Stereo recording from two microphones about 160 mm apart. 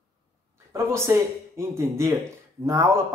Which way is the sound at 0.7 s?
15° right (ahead or behind).